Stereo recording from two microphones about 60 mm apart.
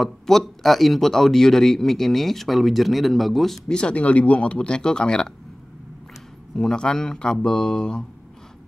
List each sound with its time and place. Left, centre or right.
0.0 s a man's voice: centre
3.6 s speech: centre
6.5 s speech: centre